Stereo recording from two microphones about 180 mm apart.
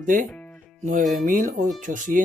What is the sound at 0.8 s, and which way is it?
Speech, 40° right (ahead or behind).